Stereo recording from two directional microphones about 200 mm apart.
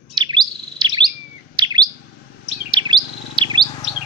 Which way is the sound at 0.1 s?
20° right (ahead or behind).